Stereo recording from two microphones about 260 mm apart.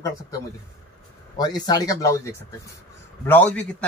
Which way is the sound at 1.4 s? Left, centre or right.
Centre.